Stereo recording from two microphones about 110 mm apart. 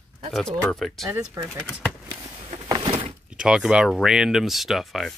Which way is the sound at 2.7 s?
45° right (ahead or behind).